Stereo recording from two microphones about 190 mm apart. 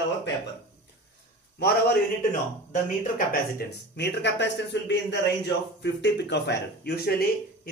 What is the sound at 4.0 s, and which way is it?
Speech, 65° left (ahead or behind).